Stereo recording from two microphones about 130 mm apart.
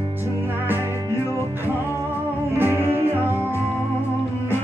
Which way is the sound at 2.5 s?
15° right (ahead or behind).